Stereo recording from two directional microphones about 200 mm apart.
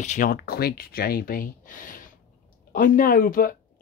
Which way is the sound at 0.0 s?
40° left (ahead or behind).